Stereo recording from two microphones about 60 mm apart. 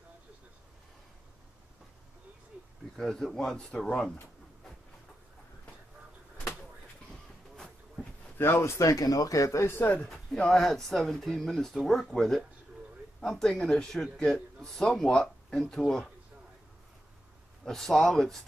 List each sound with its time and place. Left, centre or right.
3.0 s a man's voice: centre
7.5 s a sound: centre
8.4 s speech: left
9.7 s speech: left
9.9 s a man's voice: centre
15.6 s speech: centre
17.6 s a man's voice: centre